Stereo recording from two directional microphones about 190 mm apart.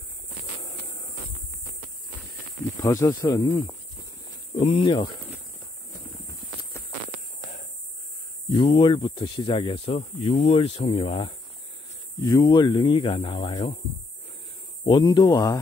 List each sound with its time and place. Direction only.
2.8 s speech: 15° left (ahead or behind)
4.6 s speech: 30° left (ahead or behind)
8.5 s speech: 25° left (ahead or behind)
14.9 s speech: 25° left (ahead or behind)